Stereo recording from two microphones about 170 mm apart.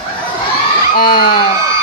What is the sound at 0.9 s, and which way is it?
Speech, 60° left (ahead or behind).